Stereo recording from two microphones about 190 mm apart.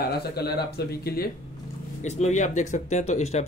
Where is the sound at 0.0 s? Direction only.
55° left (ahead or behind).